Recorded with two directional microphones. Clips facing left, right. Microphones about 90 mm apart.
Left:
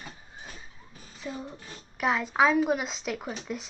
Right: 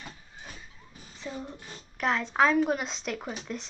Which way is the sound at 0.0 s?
20° left (ahead or behind).